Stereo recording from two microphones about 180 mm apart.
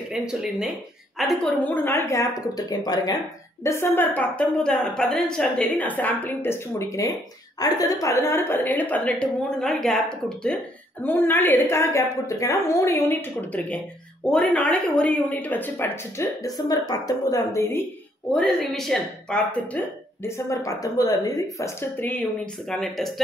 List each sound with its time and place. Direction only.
0.1 s speech: 5° right (ahead or behind); by 17.8 s 15° left (ahead or behind)
18.3 s a woman's voice: centre (ahead or behind)
20.2 s speech: 15° left (ahead or behind); by 23.2 s centre (ahead or behind)